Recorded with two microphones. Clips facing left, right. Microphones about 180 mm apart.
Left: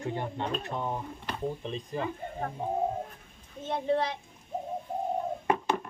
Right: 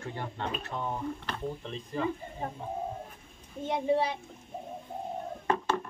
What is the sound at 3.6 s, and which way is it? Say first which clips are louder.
Speech: right 1 dB; 10° right (ahead or behind).